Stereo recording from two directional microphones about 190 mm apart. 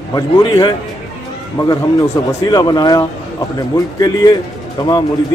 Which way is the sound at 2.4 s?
20° left (ahead or behind).